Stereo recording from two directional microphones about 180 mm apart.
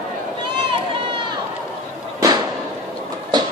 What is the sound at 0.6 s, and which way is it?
Run, 25° right (ahead or behind).